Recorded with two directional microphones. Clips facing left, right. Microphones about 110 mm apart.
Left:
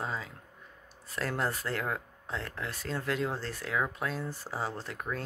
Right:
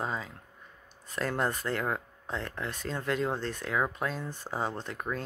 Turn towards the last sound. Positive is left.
turn(degrees=0)  # may be behind; listen again after turning